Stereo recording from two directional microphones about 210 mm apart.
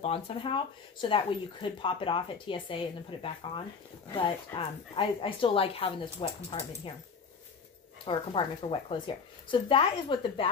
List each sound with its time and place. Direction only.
0.0 s speech: 25° left (ahead or behind)
8.0 s speech: 25° left (ahead or behind)